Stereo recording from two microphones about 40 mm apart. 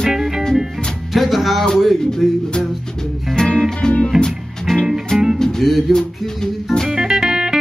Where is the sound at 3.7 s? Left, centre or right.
Left.